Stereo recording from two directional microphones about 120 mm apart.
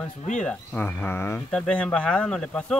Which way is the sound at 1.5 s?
10° left (ahead or behind).